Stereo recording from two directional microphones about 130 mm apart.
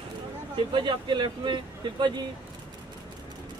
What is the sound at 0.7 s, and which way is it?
Speech, 35° right (ahead or behind).